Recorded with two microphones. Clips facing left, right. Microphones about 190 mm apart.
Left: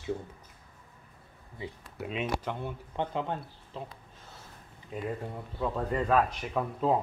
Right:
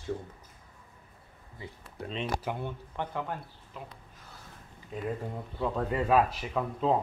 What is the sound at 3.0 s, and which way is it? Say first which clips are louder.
Speech: left 3 dB; 20° left (ahead or behind).